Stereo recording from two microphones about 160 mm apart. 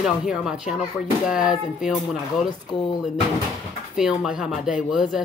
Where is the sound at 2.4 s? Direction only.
30° left (ahead or behind).